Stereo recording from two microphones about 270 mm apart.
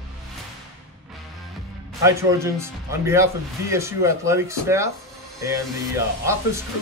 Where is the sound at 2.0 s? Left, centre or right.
Centre.